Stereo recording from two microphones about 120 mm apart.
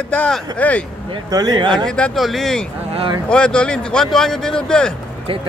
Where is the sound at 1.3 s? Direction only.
35° right (ahead or behind).